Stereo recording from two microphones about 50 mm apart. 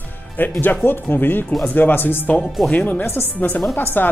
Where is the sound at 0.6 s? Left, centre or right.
Left.